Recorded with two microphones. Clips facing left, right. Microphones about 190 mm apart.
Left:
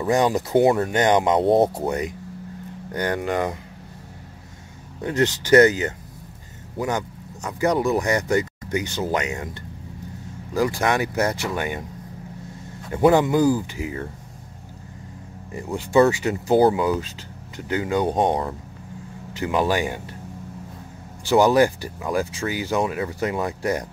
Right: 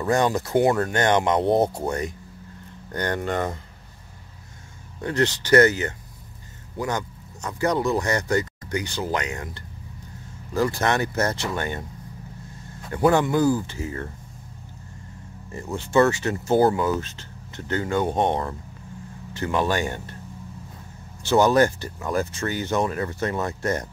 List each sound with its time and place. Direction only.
0.0 s speech: 15° left (ahead or behind)
1.4 s speech: centre (ahead or behind)
1.8 s speech: 20° left (ahead or behind)
5.0 s speech: 20° left (ahead or behind)
12.9 s speech: 20° left (ahead or behind)
15.5 s speech: 15° left (ahead or behind)
21.3 s speech: 15° left (ahead or behind)